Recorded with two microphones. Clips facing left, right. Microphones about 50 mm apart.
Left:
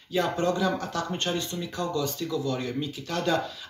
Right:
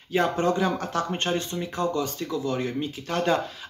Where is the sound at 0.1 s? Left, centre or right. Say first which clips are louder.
Right 3 dB; right.